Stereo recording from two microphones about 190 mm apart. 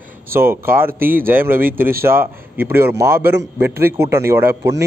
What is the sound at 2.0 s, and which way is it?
A man's voice, 10° right (ahead or behind).